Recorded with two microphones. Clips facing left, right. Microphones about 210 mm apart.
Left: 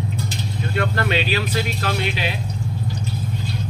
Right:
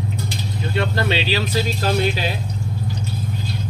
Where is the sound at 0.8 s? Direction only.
30° right (ahead or behind).